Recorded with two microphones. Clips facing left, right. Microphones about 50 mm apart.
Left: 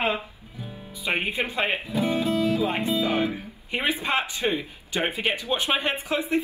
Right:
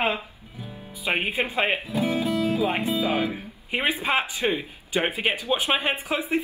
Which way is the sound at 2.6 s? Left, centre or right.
Centre.